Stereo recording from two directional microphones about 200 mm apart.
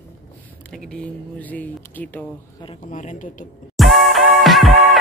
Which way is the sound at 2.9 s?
40° left (ahead or behind).